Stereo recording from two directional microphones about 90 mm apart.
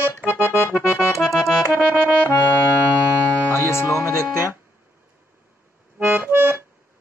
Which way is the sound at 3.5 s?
30° left (ahead or behind).